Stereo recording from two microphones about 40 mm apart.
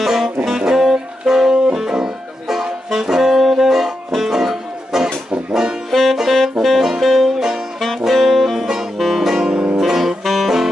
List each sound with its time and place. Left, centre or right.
0.0 s music: centre
5.9 s banjo: centre
6.1 s music: centre
6.6 s saxophone: centre
7.0 s music: centre
8.0 s saxophone: centre
8.9 s music: centre
9.3 s music: centre